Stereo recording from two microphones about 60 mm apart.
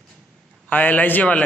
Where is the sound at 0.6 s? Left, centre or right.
Left.